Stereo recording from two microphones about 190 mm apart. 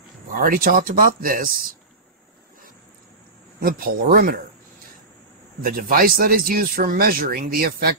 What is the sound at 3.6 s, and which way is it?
Speech, 50° right (ahead or behind).